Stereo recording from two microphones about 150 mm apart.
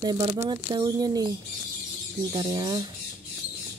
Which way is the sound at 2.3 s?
30° right (ahead or behind).